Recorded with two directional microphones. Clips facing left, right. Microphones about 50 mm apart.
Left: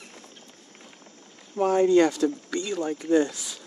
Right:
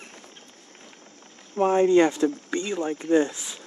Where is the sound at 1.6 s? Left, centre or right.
Right.